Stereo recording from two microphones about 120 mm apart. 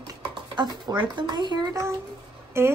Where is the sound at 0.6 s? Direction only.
35° right (ahead or behind).